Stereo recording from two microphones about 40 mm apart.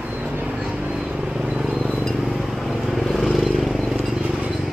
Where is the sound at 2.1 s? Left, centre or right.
Centre.